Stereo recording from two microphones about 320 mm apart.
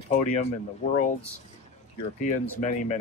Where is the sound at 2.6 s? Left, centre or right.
Left.